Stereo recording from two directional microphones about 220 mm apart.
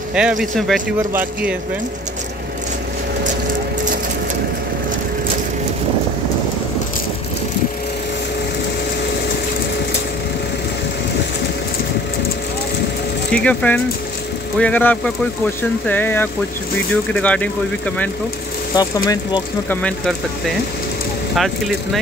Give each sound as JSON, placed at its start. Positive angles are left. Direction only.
{"t": 0.1, "sound": "speech", "side_deg": -5}
{"t": 13.3, "sound": "speech", "side_deg": 5}
{"t": 18.8, "sound": "speech", "side_deg": 15}
{"t": 19.8, "sound": "speech", "side_deg": 0}